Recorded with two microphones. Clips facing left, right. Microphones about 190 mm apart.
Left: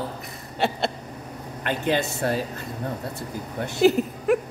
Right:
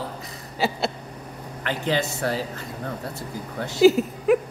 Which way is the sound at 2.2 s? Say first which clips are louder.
Left 3 dB; 25° left (ahead or behind).